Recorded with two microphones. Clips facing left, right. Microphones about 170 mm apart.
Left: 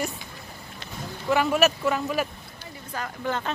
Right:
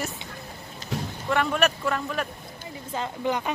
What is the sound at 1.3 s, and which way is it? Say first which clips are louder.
Speech: left 2 dB; 5° left (ahead or behind).